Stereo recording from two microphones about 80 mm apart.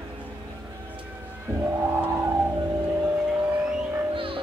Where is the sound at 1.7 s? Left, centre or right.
Right.